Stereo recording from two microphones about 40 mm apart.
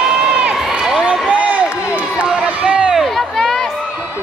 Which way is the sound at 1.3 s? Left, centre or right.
Right.